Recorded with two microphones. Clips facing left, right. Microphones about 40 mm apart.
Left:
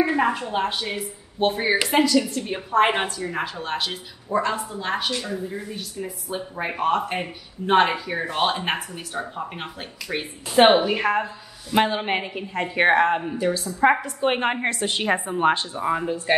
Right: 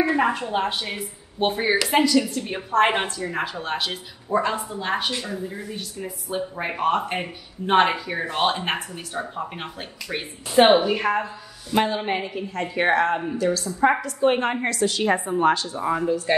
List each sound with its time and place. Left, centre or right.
0.1 s a woman's voice: centre
11.7 s a woman's voice: centre
15.0 s a woman's voice: left
15.8 s a woman's voice: centre
16.3 s speech: left